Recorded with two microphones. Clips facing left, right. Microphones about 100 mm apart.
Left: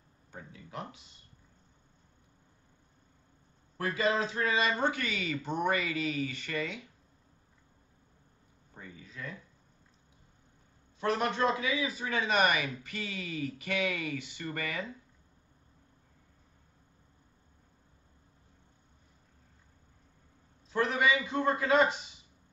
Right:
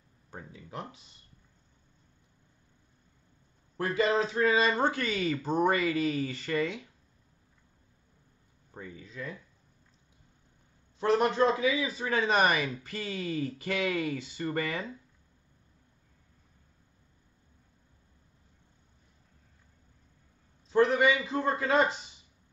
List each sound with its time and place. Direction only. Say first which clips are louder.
3.7 s speech: right 3 dB; 30° right (ahead or behind)
11.0 s speech: right 5 dB; 30° right (ahead or behind)
20.7 s speech: right 4 dB; 30° right (ahead or behind)